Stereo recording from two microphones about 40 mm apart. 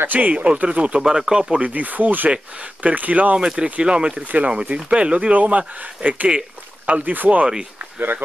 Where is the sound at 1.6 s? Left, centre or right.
Right.